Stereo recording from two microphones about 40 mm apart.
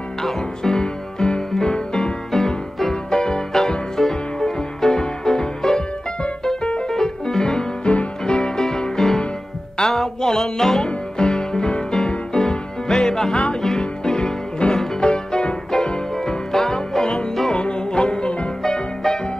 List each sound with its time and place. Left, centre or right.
0.2 s music: centre
17.5 s music: left